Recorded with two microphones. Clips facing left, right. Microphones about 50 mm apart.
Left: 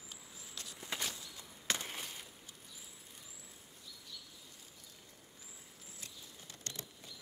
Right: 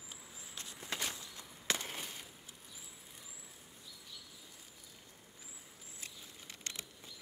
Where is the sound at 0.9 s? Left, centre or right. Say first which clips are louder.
Even; centre.